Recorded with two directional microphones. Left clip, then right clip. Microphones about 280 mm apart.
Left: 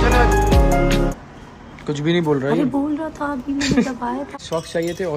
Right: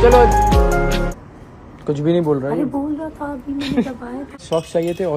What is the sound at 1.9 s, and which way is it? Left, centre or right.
Speech, centre.